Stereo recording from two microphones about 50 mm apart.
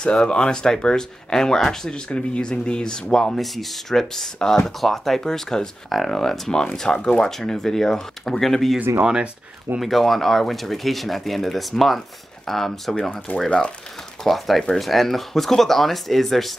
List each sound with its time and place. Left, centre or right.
0.0 s speech: centre
9.0 s speech: centre
9.8 s speech: centre
13.3 s speech: left
14.2 s speech: centre